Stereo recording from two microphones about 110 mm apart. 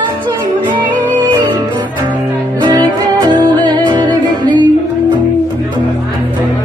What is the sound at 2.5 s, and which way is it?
Music, 40° right (ahead or behind).